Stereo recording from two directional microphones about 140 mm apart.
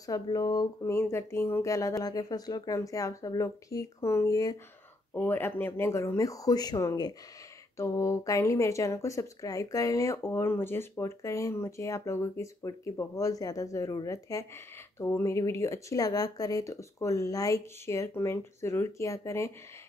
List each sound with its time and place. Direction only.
0.0 s speech: 25° left (ahead or behind)